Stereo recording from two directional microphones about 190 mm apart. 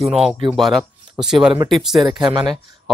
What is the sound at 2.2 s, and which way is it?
Speech, 25° right (ahead or behind).